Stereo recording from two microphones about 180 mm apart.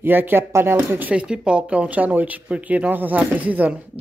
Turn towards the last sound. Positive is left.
turn(degrees=-10)  # may be behind; listen again after turning